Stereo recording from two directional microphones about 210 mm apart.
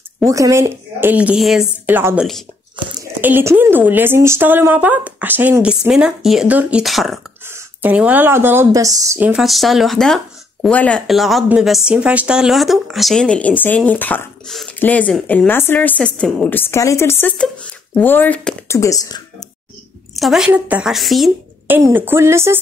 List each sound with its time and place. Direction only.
0.3 s a woman's voice: 15° right (ahead or behind); by 18.8 s 5° left (ahead or behind)
18.8 s speech: 15° left (ahead or behind)
20.2 s a woman's voice: centre (ahead or behind)